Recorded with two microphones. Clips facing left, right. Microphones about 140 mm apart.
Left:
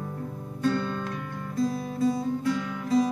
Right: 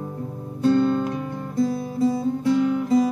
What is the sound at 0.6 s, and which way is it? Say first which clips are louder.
Music: right 8 dB; 25° right (ahead or behind).